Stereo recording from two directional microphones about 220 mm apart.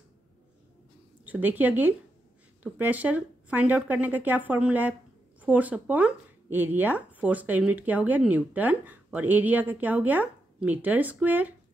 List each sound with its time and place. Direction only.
1.2 s speech: 10° right (ahead or behind)